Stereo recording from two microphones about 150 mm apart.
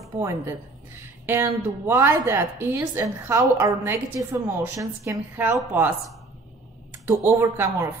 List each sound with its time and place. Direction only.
0.2 s a woman's voice: 15° right (ahead or behind)
7.2 s a woman's voice: 15° right (ahead or behind)